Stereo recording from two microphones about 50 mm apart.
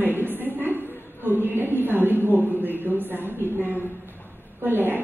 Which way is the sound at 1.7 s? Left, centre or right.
Right.